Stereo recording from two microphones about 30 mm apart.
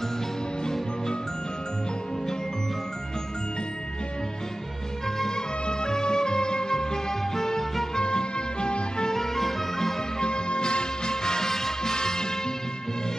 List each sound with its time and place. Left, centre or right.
5.2 s music: left
8.0 s music: left
9.1 s music: centre
10.2 s music: left